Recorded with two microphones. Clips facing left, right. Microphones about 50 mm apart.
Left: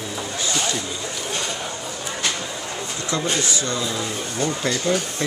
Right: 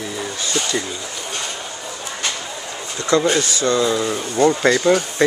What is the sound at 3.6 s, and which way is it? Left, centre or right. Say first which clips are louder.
Speech: right 8 dB; right.